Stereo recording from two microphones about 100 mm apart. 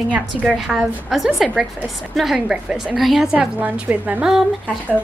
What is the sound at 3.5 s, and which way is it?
Speech, 15° right (ahead or behind).